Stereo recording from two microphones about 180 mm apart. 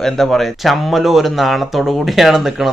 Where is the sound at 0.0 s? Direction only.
Centre (ahead or behind).